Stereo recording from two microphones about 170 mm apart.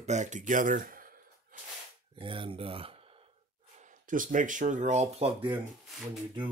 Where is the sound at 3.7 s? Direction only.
50° right (ahead or behind).